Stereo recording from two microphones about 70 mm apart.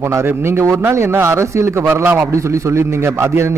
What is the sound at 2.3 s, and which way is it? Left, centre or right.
A man's voice, right.